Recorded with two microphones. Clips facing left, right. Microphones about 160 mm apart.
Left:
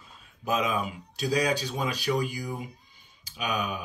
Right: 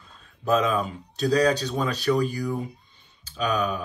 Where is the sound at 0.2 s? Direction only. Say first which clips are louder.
Right 6 dB; 10° left (ahead or behind).